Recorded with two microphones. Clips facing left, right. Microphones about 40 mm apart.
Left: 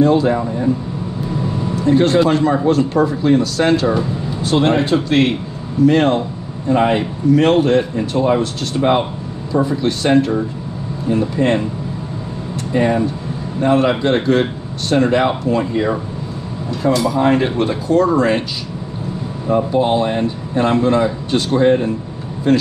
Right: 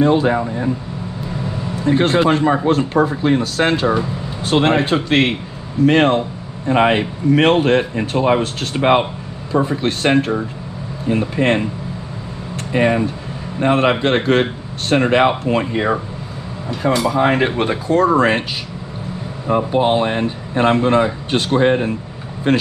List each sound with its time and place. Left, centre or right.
0.0 s speech: right
1.9 s speech: right
5.9 s speech: right
12.7 s speech: right
19.4 s speech: right